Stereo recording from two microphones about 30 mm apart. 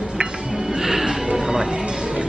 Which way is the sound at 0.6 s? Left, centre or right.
Centre.